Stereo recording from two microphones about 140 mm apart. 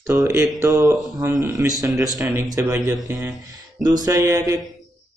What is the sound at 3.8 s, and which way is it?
Speech, 25° right (ahead or behind).